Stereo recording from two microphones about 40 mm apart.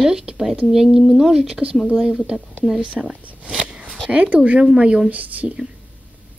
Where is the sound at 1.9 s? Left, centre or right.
Centre.